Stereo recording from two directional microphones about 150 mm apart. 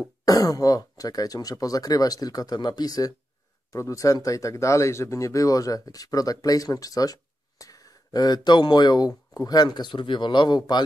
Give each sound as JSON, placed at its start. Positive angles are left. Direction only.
{"t": 0.2, "sound": "speech", "side_deg": 25}